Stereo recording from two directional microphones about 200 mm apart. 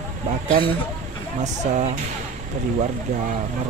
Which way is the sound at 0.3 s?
40° right (ahead or behind).